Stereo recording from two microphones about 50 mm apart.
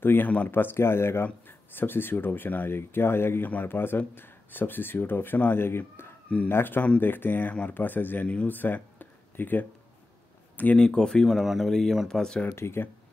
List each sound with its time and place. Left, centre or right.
0.0 s speech: left
10.8 s speech: centre
11.2 s speech: centre
12.4 s speech: left